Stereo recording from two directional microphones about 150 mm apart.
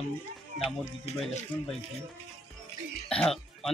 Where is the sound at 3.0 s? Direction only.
5° left (ahead or behind).